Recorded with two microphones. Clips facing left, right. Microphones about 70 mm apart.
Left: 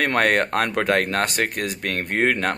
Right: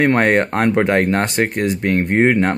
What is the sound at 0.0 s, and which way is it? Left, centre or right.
Speech, right.